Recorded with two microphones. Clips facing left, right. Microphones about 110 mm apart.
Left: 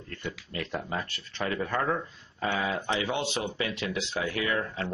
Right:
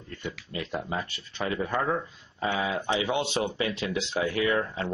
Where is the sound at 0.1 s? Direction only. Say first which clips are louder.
Right 1 dB; 10° right (ahead or behind).